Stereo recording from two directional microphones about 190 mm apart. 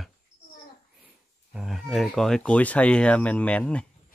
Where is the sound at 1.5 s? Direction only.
Centre (ahead or behind).